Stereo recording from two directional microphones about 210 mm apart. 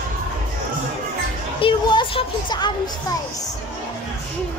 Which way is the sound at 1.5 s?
25° left (ahead or behind).